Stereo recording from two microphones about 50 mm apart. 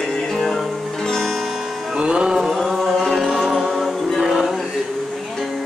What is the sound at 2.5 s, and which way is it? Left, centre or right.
Chant, centre.